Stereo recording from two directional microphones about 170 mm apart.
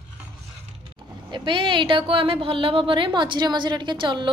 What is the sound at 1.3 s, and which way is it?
A woman's voice, 30° right (ahead or behind).